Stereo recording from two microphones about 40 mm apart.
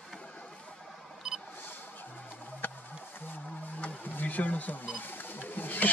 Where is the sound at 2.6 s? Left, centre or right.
Left.